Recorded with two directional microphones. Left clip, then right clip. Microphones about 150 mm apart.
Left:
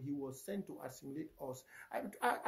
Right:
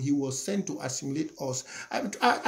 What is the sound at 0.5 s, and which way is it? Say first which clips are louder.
Speech: right 13 dB; 10° right (ahead or behind).